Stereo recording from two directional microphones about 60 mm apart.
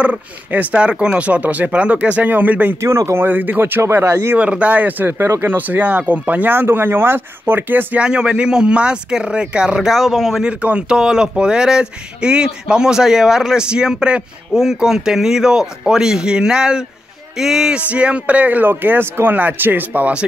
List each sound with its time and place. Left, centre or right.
0.0 s speech: right
2.8 s speech: right
3.3 s speech: right
3.8 s speech: right
4.4 s speech: right
5.2 s speech: right
8.0 s speech: centre
10.6 s speech: right
11.0 s speech: centre
17.7 s speech: right